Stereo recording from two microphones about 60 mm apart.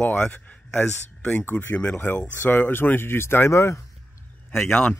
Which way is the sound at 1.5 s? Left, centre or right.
Left.